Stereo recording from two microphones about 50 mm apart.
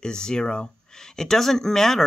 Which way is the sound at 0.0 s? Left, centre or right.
Centre.